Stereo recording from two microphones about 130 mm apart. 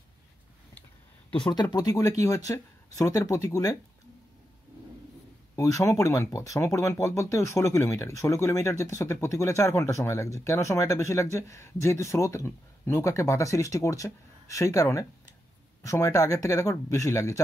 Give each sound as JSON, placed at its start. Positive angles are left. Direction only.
{"t": 1.3, "sound": "speech", "side_deg": 35}
{"t": 5.6, "sound": "speech", "side_deg": 25}